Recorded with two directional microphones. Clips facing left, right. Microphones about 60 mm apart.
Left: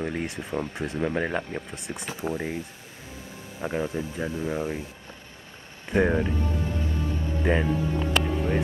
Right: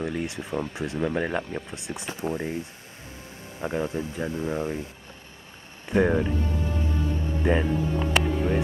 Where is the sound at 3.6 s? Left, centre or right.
Centre.